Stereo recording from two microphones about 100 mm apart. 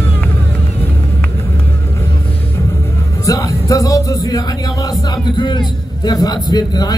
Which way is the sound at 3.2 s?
35° left (ahead or behind).